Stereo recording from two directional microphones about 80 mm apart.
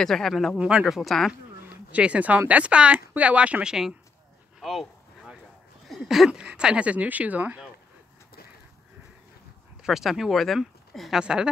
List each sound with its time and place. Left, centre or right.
0.0 s speech: centre
0.6 s speech: centre
1.7 s speech: centre
4.6 s a sound: centre
5.9 s speech: centre
9.8 s speech: centre